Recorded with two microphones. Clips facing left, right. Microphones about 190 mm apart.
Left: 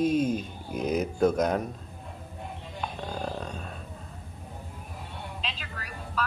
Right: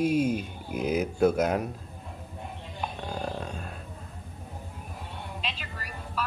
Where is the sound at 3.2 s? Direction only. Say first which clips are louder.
Even; 5° right (ahead or behind).